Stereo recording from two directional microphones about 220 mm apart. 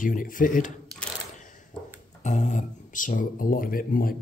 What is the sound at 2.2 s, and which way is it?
Speech, 30° left (ahead or behind).